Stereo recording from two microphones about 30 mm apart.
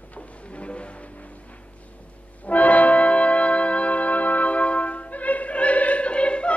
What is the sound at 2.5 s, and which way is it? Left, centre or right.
Music, left.